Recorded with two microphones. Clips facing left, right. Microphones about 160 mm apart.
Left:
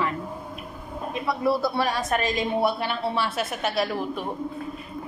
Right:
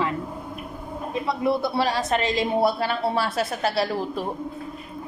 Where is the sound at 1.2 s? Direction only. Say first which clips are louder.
Even; 20° right (ahead or behind).